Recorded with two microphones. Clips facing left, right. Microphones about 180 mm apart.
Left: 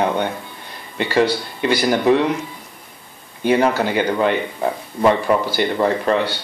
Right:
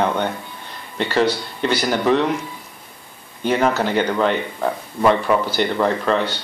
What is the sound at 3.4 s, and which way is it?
Speech, 10° left (ahead or behind).